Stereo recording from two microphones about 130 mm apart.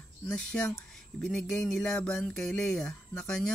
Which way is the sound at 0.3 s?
10° left (ahead or behind).